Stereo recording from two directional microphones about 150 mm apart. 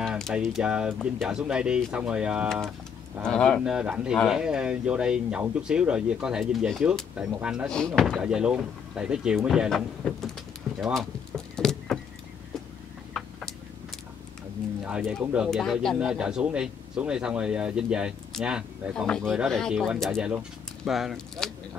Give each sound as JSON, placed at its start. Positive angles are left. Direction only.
{"t": 0.0, "sound": "typing", "side_deg": 0}
{"t": 0.9, "sound": "speech", "side_deg": 0}
{"t": 3.3, "sound": "speech", "side_deg": 5}
{"t": 3.6, "sound": "speech", "side_deg": -5}
{"t": 7.6, "sound": "speech", "side_deg": 5}
{"t": 10.8, "sound": "vehicle", "side_deg": 0}
{"t": 14.9, "sound": "speech", "side_deg": -5}